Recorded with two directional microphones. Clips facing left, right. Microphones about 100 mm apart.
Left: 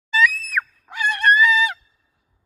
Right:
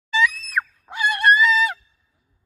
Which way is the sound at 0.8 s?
15° right (ahead or behind).